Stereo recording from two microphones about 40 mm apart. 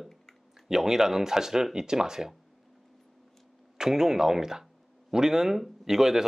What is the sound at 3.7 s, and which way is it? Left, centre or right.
Speech, centre.